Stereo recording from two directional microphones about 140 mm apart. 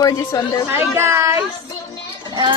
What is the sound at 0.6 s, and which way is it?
Speech, 15° right (ahead or behind).